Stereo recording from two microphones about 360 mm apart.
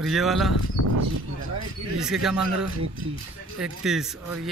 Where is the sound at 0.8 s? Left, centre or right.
Left.